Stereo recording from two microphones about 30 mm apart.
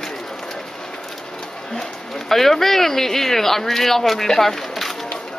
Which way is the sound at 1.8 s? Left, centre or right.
Centre.